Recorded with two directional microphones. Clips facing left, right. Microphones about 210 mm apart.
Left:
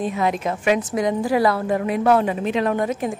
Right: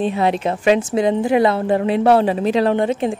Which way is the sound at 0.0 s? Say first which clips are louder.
Right 4 dB; 30° right (ahead or behind).